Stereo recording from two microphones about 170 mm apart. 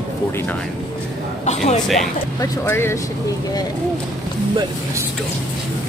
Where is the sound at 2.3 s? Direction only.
15° left (ahead or behind).